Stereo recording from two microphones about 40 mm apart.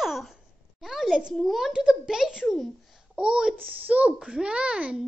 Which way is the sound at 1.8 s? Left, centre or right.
Centre.